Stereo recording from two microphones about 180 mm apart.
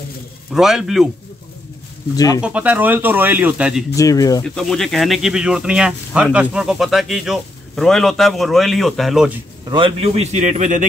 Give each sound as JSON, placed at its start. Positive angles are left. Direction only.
{"t": 0.5, "sound": "speech", "side_deg": 0}
{"t": 2.1, "sound": "speech", "side_deg": 20}
{"t": 2.4, "sound": "speech", "side_deg": -5}
{"t": 3.9, "sound": "speech", "side_deg": 20}
{"t": 4.6, "sound": "speech", "side_deg": 0}
{"t": 9.7, "sound": "a man's voice", "side_deg": -25}